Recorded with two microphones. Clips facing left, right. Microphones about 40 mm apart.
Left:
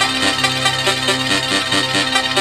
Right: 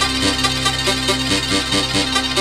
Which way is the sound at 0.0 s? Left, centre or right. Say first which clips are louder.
Left 2 dB; left.